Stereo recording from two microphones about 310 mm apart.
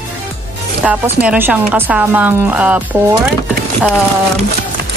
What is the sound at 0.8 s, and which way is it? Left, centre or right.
Speech, centre.